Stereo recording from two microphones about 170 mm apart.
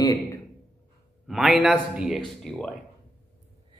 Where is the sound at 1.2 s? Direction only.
Centre (ahead or behind).